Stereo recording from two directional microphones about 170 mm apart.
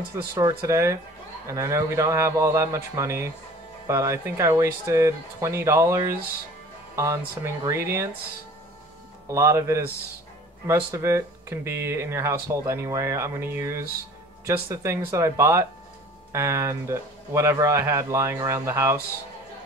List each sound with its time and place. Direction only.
0.1 s speech: 25° right (ahead or behind)
9.3 s speech: 15° right (ahead or behind)